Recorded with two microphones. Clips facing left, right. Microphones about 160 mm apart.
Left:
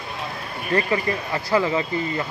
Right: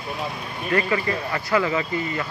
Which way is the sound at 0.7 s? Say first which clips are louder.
Left 1 dB; 30° left (ahead or behind).